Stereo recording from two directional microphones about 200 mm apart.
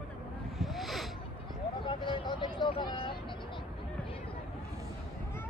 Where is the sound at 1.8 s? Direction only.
25° left (ahead or behind).